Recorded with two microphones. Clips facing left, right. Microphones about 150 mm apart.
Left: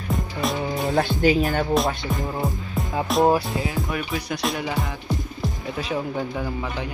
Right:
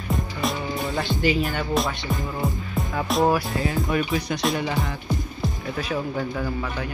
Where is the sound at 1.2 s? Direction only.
45° left (ahead or behind).